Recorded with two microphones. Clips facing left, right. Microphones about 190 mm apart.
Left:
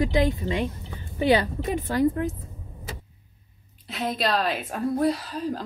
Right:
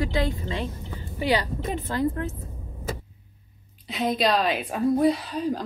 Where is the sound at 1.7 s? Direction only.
15° left (ahead or behind).